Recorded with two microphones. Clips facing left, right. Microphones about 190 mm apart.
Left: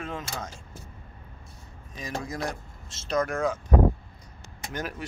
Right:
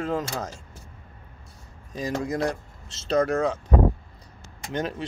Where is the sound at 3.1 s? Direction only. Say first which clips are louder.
Right 4 dB; 35° right (ahead or behind).